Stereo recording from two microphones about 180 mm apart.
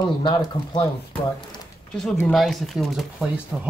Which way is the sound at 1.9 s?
5° left (ahead or behind).